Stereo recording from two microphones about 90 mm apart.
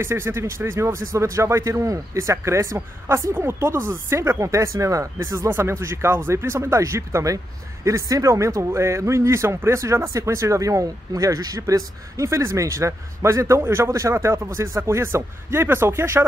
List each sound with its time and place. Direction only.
0.0 s speech: 30° right (ahead or behind)